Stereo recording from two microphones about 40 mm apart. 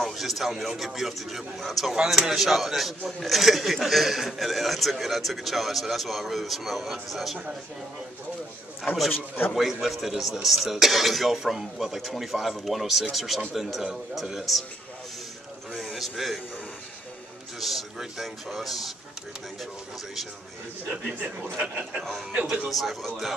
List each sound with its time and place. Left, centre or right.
0.0 s speech: centre
9.1 s speech: left
9.6 s a man's voice: centre
15.7 s a sound: centre
17.6 s speech: centre
22.3 s speech: right
22.7 s speech: centre